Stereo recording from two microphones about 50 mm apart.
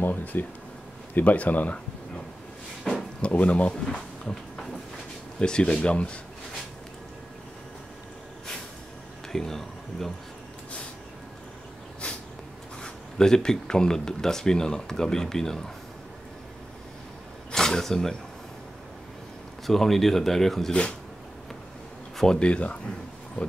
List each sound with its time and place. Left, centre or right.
0.0 s speech: left
2.8 s drawer open or close: centre
3.2 s speech: left
3.9 s a sound: centre
5.4 s speech: centre
9.3 s speech: centre
12.8 s speech: centre
17.5 s a sound: centre
19.6 s speech: centre
22.1 s a sound: centre
22.4 s speech: left